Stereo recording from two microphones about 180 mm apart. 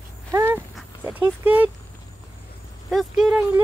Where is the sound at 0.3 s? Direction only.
15° right (ahead or behind).